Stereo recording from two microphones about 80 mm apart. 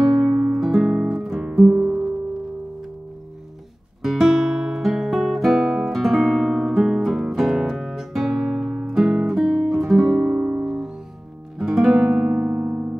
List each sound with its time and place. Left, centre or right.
0.0 s guitar: centre
4.0 s guitar: centre
11.5 s music: centre
12.3 s music: centre